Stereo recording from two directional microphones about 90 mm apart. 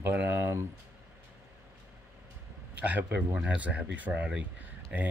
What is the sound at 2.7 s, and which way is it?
Speech, 15° right (ahead or behind).